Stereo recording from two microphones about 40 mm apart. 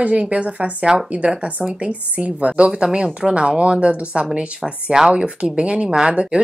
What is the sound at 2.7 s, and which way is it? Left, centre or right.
Speech, right.